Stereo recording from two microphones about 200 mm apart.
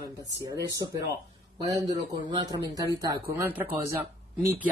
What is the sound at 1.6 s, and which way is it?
Speech, 20° right (ahead or behind).